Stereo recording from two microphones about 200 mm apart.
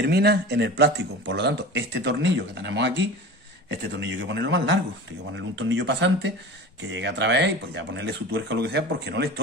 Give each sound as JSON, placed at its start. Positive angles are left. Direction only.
{"t": 0.0, "sound": "speech", "side_deg": -55}